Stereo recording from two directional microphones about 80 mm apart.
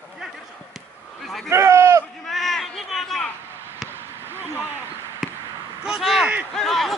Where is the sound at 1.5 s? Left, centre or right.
Right.